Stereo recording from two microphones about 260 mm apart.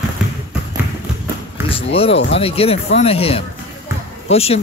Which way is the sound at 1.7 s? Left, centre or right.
Left.